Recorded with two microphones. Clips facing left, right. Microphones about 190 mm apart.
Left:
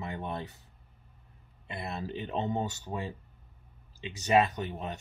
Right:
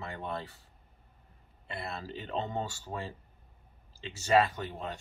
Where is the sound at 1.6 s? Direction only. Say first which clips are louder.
Left 2 dB; 20° left (ahead or behind).